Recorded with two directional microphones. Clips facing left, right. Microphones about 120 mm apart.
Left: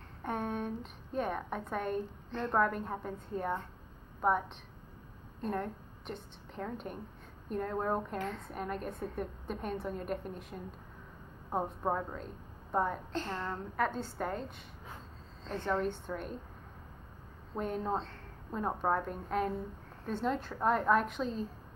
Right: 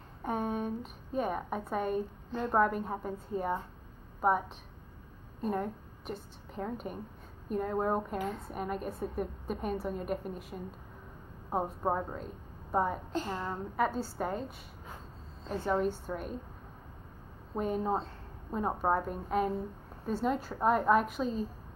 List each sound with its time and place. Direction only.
0.2 s a woman's voice: 5° right (ahead or behind)
11.8 s a woman's voice: 25° right (ahead or behind)
12.7 s a woman's voice: 5° right (ahead or behind)
17.6 s a woman's voice: 5° right (ahead or behind)